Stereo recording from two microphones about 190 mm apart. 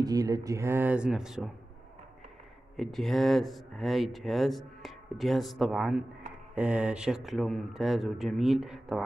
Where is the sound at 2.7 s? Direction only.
Centre (ahead or behind).